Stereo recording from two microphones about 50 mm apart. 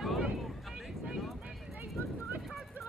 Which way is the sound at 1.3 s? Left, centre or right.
Right.